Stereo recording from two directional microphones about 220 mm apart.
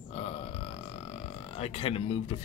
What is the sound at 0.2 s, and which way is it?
Burping, 25° left (ahead or behind).